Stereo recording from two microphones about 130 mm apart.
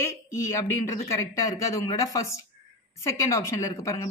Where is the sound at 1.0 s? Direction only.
25° left (ahead or behind).